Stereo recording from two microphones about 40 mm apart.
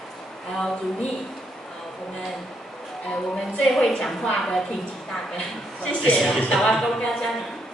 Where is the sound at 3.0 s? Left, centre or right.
Centre.